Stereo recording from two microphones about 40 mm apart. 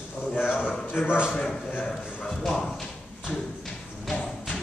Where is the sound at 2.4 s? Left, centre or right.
Centre.